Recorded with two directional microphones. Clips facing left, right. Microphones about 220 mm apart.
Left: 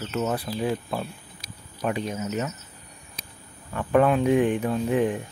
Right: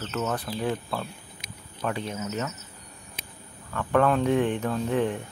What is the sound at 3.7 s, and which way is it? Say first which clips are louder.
Speech: left 2 dB; 15° left (ahead or behind).